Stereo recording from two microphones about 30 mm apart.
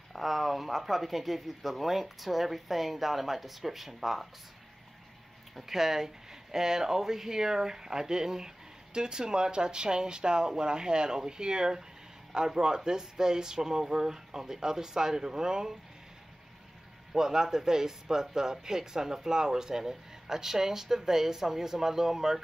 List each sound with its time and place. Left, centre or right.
0.1 s speech: centre
5.6 s speech: centre
17.1 s speech: centre